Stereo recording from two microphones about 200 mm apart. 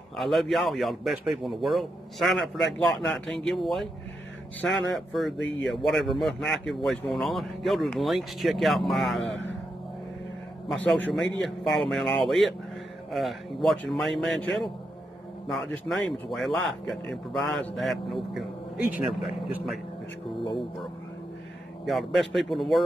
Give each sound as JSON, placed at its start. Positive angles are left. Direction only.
{"t": 0.2, "sound": "speech", "side_deg": 0}
{"t": 5.4, "sound": "speech", "side_deg": 65}
{"t": 5.8, "sound": "speech", "side_deg": 0}
{"t": 9.3, "sound": "speech", "side_deg": 65}
{"t": 11.1, "sound": "speech", "side_deg": 0}
{"t": 21.8, "sound": "speech", "side_deg": 0}